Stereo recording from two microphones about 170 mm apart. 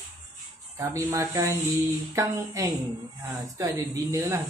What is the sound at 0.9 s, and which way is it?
Speech, 15° right (ahead or behind).